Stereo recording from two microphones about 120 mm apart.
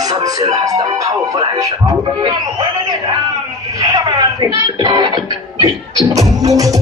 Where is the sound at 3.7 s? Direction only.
30° right (ahead or behind).